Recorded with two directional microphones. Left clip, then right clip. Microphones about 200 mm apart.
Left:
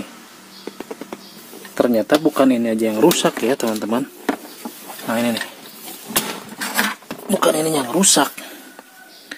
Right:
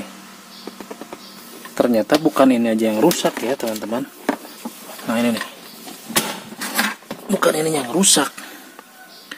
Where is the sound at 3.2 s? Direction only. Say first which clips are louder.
Left 2 dB; 15° left (ahead or behind).